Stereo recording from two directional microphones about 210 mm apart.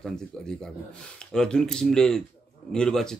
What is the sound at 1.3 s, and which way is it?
A man's voice, 5° left (ahead or behind).